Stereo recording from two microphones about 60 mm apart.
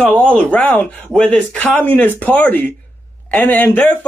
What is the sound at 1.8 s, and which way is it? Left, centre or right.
A man's voice, left.